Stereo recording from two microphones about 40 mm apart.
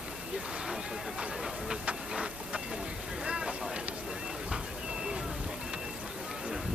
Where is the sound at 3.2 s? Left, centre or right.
Right.